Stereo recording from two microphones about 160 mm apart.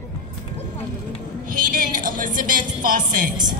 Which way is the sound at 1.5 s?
60° right (ahead or behind).